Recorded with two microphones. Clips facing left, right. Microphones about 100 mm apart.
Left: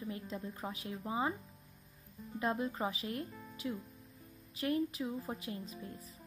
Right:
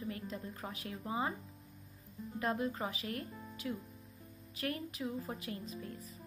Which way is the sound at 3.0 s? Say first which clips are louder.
Left 1 dB; 30° left (ahead or behind).